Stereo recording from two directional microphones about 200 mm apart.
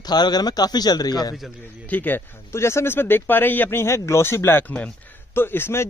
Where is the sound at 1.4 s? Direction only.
10° left (ahead or behind).